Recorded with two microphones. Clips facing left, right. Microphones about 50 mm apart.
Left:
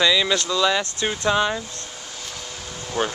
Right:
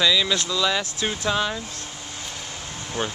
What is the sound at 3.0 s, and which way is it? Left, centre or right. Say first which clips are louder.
Speech: left 4 dB; left.